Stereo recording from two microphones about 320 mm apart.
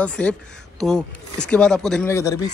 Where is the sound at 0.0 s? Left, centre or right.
Centre.